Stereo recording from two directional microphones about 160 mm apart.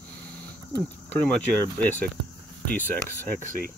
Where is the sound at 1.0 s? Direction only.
10° left (ahead or behind).